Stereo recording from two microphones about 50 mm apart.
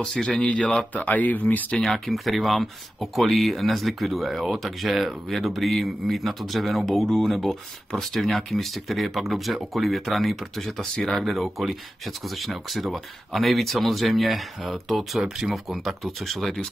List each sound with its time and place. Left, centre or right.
0.0 s speech: centre
0.3 s speech: left
1.0 s speech: left
1.8 s speech: centre
10.8 s speech: centre
11.2 s speech: centre